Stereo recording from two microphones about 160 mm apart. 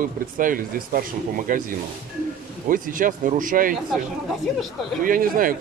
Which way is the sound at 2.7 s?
60° right (ahead or behind).